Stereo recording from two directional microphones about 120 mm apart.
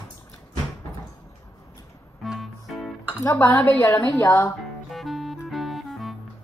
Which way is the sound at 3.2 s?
25° left (ahead or behind).